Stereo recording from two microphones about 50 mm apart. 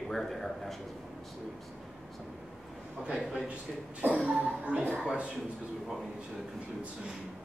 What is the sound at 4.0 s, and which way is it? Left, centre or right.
Speech, right.